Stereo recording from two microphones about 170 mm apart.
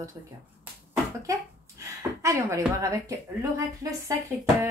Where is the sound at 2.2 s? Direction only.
15° right (ahead or behind).